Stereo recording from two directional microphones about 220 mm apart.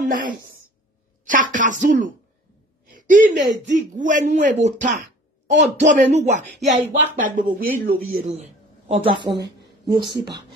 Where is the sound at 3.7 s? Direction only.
35° right (ahead or behind).